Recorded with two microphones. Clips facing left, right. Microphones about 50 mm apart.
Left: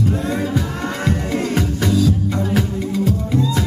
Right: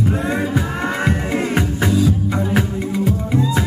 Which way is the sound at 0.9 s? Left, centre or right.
Right.